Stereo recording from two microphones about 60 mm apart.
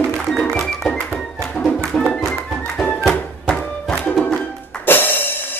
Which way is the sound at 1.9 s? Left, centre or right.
Centre.